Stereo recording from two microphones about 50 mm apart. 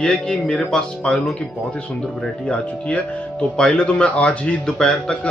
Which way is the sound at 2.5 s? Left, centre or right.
Left.